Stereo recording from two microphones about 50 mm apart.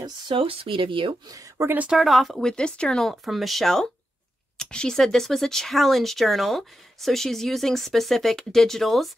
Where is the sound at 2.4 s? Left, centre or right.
Centre.